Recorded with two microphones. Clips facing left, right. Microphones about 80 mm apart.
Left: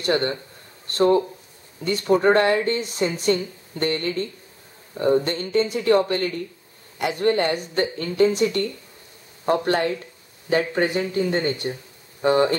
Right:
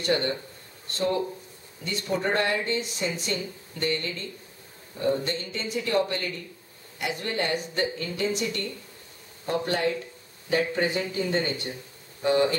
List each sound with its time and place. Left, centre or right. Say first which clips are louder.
0.0 s speech: left 4 dB; left
1.9 s speech: left 9 dB; left